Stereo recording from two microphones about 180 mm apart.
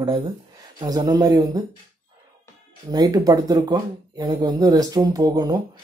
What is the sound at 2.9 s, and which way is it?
Speech, 20° right (ahead or behind).